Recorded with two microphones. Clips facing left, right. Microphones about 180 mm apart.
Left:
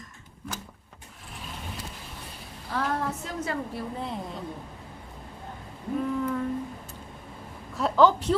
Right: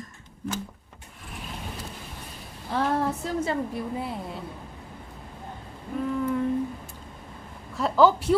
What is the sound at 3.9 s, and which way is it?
Speech, 5° right (ahead or behind).